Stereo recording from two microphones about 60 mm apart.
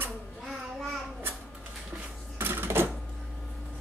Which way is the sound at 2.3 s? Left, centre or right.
Right.